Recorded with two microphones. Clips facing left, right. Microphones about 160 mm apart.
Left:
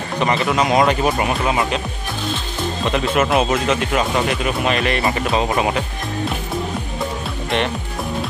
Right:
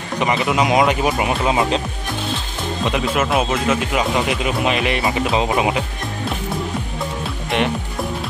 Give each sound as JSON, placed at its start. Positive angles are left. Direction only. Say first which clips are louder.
{"t": 0.2, "sound": "speech", "louder": "even", "side_deg": -10}
{"t": 1.4, "sound": "speech", "louder": "right 2 dB", "side_deg": -20}
{"t": 2.9, "sound": "speech", "louder": "left 2 dB", "side_deg": -5}